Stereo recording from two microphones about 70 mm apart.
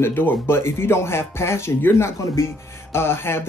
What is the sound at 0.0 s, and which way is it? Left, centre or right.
Speech, left.